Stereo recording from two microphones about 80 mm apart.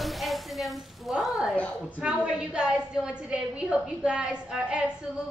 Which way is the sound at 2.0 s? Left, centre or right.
Centre.